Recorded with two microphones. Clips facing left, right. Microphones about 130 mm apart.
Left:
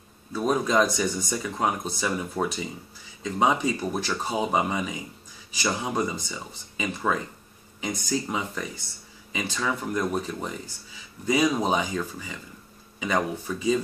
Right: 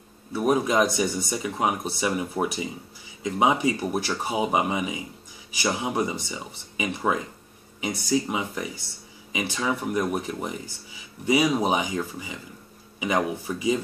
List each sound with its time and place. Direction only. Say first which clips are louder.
0.3 s speech: right 2 dB; 15° right (ahead or behind)